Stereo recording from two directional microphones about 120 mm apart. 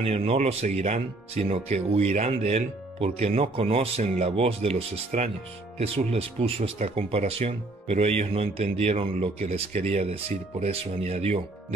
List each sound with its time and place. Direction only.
0.0 s speech: 55° right (ahead or behind)